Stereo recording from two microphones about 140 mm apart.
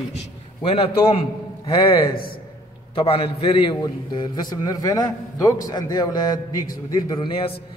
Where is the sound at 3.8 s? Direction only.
25° left (ahead or behind).